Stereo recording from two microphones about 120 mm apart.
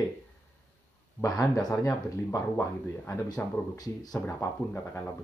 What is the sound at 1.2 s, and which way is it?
Speech, 30° left (ahead or behind).